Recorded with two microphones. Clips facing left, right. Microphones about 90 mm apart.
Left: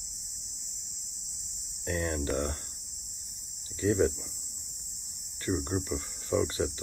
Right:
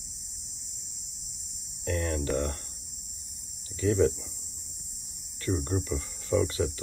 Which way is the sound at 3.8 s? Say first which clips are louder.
Right 2 dB; 30° left (ahead or behind).